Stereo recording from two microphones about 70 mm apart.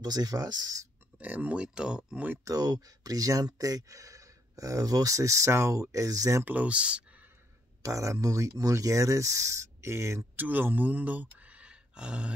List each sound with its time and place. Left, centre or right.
0.0 s speech: right
1.1 s speech: right
2.4 s speech: right
6.4 s speech: right
7.8 s speech: right
10.3 s speech: right